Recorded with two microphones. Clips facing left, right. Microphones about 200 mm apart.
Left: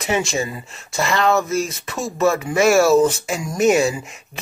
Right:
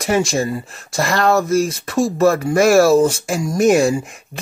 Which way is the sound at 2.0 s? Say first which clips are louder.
Right 8 dB; 35° right (ahead or behind).